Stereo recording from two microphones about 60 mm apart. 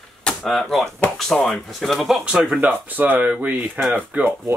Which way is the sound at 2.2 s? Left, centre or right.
Centre.